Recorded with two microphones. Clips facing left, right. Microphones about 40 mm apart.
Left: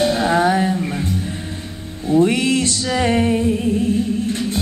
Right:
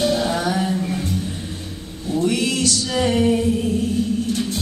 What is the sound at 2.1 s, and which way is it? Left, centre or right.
Music, left.